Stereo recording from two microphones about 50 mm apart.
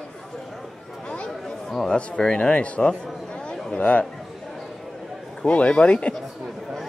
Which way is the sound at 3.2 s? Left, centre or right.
Centre.